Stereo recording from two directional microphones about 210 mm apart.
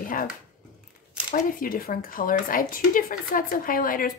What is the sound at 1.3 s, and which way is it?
Speech, 40° left (ahead or behind).